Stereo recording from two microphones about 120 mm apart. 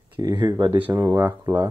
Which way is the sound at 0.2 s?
35° right (ahead or behind).